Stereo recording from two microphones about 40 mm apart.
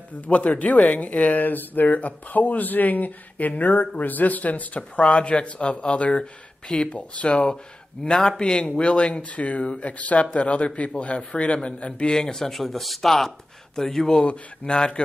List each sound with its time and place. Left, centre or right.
0.3 s speech: left
12.1 s speech: centre
14.2 s speech: left